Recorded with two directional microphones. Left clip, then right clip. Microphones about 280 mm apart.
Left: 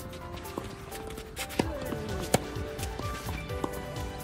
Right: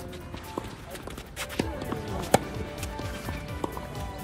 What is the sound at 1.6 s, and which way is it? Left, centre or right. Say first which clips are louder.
Music: left 1 dB; left.